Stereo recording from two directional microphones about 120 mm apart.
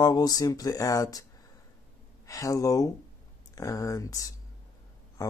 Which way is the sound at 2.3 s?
30° left (ahead or behind).